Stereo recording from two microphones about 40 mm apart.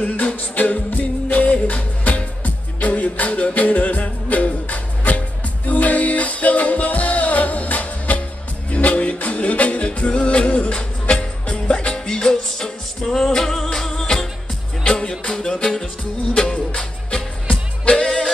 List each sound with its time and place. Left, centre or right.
0.0 s music: left
16.7 s music: left